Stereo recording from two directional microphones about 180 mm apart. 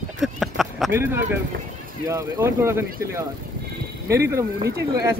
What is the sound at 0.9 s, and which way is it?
Speech, 10° right (ahead or behind).